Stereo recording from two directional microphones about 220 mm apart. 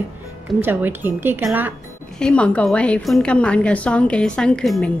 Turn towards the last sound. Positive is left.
turn(degrees=0)  # may be behind; listen again after turning